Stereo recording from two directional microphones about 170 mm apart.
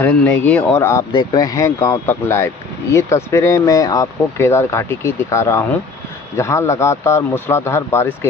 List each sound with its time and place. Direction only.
0.0 s speech: 10° left (ahead or behind)